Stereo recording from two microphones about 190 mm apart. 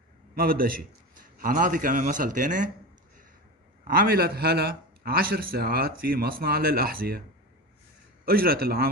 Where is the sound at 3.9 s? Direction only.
50° right (ahead or behind).